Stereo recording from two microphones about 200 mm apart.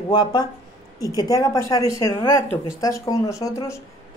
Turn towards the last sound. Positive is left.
turn(degrees=15)  # may be behind; listen again after turning